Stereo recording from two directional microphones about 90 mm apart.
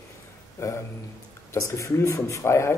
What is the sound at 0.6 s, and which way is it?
A man's voice, 40° left (ahead or behind).